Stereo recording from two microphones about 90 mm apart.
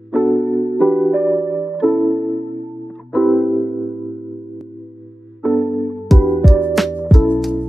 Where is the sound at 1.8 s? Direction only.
Centre (ahead or behind).